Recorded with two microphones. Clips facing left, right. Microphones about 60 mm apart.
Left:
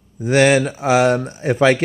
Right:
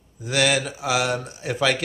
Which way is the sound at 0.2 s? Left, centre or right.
Left.